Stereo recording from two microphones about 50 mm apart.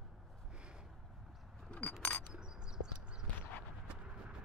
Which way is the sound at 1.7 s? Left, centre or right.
Left.